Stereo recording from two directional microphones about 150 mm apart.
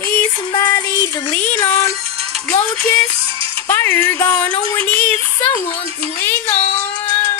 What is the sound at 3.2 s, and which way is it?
Music, 35° right (ahead or behind).